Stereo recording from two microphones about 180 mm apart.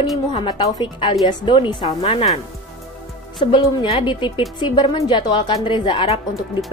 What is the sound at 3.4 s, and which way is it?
A woman's voice, 30° left (ahead or behind).